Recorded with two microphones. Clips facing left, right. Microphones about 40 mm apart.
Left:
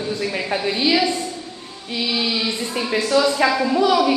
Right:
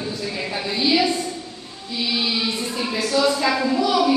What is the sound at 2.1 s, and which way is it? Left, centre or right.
Music, left.